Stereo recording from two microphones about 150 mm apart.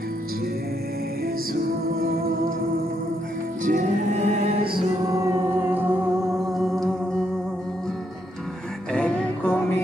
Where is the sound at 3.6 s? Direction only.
55° right (ahead or behind).